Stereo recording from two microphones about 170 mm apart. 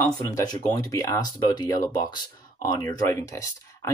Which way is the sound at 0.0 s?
20° left (ahead or behind).